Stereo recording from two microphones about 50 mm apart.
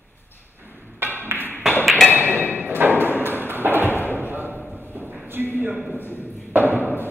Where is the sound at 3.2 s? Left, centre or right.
Right.